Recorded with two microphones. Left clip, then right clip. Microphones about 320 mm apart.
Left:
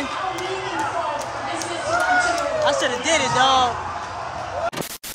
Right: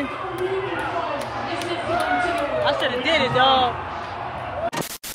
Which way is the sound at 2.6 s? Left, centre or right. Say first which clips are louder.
Left 1 dB; left.